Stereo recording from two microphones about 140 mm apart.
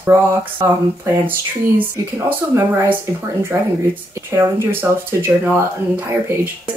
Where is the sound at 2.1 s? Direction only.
15° right (ahead or behind).